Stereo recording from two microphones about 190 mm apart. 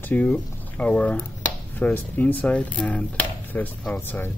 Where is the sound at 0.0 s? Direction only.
10° left (ahead or behind).